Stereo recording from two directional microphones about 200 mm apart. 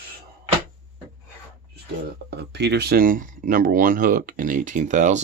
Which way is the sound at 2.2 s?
55° right (ahead or behind).